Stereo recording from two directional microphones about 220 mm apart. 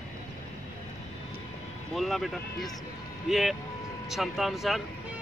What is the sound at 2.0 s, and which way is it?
Speech, centre (ahead or behind).